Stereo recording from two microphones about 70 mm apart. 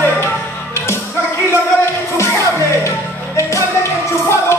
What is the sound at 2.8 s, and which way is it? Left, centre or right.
Music, left.